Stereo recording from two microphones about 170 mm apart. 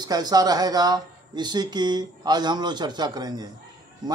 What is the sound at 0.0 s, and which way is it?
Speech, 25° right (ahead or behind).